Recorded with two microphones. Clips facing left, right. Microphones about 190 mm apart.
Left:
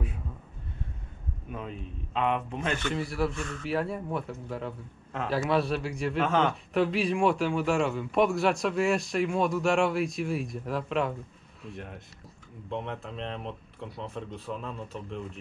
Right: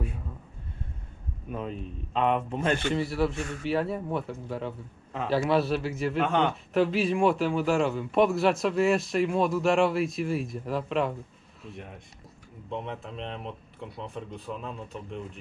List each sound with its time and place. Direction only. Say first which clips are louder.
1.7 s a man's voice: right 3 dB; 35° right (ahead or behind)
3.0 s a man's voice: right 3 dB; centre (ahead or behind)